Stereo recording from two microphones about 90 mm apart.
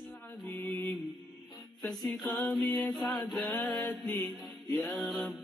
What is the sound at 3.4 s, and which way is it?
Mantra, 15° left (ahead or behind).